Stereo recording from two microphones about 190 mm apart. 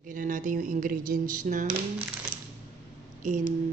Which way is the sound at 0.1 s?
45° right (ahead or behind).